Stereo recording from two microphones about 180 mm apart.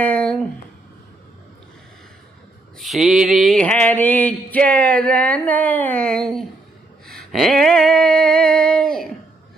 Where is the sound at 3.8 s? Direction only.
10° left (ahead or behind).